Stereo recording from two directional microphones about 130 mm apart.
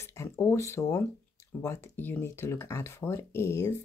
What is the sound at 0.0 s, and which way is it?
Speech, 20° left (ahead or behind).